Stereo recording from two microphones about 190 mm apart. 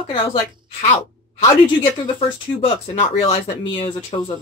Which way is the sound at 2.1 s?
30° left (ahead or behind).